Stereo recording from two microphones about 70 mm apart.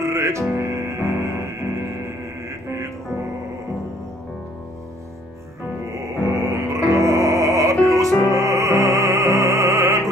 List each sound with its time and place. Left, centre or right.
0.0 s music: right
5.9 s music: right